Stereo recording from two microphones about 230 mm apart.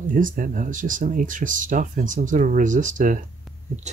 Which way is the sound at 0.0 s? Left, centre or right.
Right.